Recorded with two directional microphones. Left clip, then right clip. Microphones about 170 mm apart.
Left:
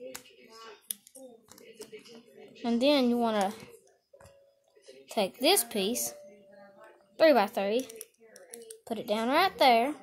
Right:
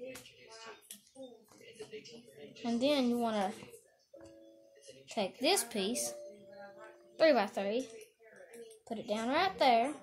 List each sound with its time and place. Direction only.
2.6 s a woman's voice: 40° left (ahead or behind)
5.0 s a woman's voice: 40° left (ahead or behind)
7.2 s a woman's voice: 30° left (ahead or behind)